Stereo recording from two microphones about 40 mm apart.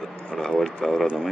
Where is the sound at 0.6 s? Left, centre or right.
Centre.